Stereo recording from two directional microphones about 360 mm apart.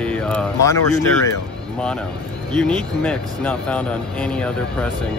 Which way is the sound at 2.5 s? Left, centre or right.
Centre.